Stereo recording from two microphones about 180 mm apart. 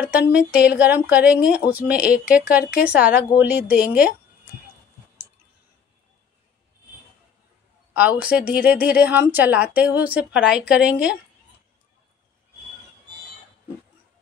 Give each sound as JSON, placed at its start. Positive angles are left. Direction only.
{"t": 0.3, "sound": "a woman's voice", "side_deg": -5}
{"t": 2.0, "sound": "a woman's voice", "side_deg": 60}
{"t": 2.8, "sound": "a woman's voice", "side_deg": -5}
{"t": 7.9, "sound": "a woman's voice", "side_deg": -10}